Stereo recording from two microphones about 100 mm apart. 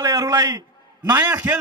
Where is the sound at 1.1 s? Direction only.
20° right (ahead or behind).